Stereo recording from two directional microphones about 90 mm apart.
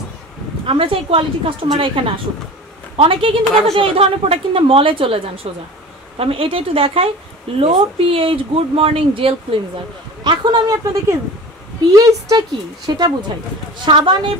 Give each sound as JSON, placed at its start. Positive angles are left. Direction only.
{"t": 0.7, "sound": "a woman's voice", "side_deg": -80}
{"t": 3.4, "sound": "a woman's voice", "side_deg": 10}
{"t": 3.7, "sound": "speech", "side_deg": -90}
{"t": 10.2, "sound": "speech", "side_deg": -50}
{"t": 12.1, "sound": "speech", "side_deg": -45}
{"t": 13.8, "sound": "speech", "side_deg": -65}